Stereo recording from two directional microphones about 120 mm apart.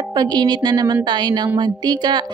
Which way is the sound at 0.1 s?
35° right (ahead or behind).